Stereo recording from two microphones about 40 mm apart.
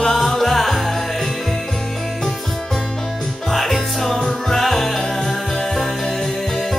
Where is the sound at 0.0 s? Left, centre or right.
Centre.